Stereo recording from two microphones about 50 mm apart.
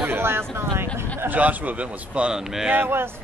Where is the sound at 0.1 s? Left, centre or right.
Right.